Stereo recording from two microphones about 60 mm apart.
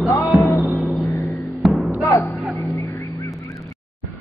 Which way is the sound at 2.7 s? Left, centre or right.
Left.